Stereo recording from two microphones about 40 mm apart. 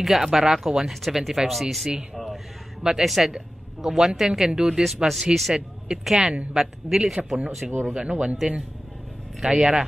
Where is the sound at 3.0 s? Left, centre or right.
Centre.